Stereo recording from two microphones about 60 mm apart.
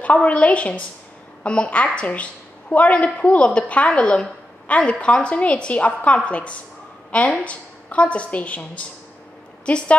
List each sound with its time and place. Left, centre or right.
0.0 s a woman's voice: left